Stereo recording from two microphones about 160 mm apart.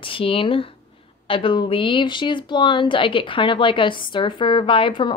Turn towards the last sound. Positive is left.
turn(degrees=30)  # may be behind; listen again after turning